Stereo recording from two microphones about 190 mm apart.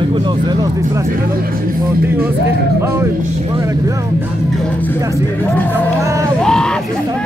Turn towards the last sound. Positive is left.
turn(degrees=5)  # may be behind; listen again after turning